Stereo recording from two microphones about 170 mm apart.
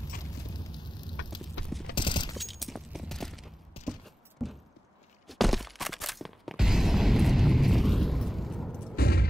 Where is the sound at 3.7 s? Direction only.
35° left (ahead or behind).